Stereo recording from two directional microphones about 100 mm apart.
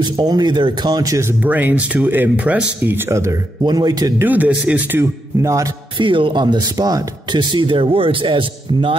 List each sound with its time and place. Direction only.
0.0 s speech: 45° right (ahead or behind)
1.4 s speech: 15° right (ahead or behind)
3.1 s speech: 30° right (ahead or behind)
3.6 s speech: 40° right (ahead or behind)
4.2 s speech: 15° right (ahead or behind)
5.4 s speech: 30° right (ahead or behind)
5.9 s speech: 55° right (ahead or behind)